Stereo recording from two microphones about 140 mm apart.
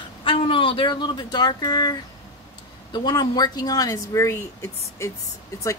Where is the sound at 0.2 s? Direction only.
40° left (ahead or behind).